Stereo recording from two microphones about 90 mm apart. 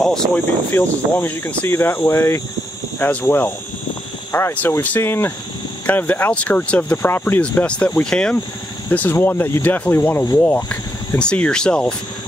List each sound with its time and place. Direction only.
0.3 s speech: 25° left (ahead or behind)
3.0 s speech: 15° left (ahead or behind)
8.9 s speech: 20° left (ahead or behind)